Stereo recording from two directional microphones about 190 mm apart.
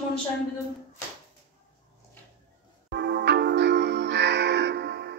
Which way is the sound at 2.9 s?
60° right (ahead or behind).